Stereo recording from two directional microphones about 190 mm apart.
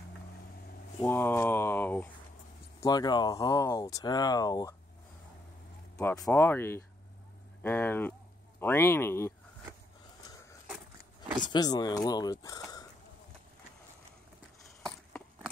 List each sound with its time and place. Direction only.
1.0 s speech: 10° left (ahead or behind)
2.8 s speech: 20° left (ahead or behind)
5.9 s speech: 20° left (ahead or behind)
11.4 s speech: 20° left (ahead or behind)